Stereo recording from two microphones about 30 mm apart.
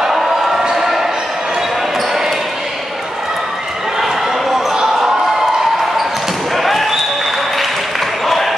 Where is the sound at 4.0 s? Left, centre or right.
Centre.